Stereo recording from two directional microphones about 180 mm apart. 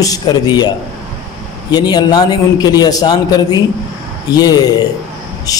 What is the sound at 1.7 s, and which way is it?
A man's voice, 25° left (ahead or behind).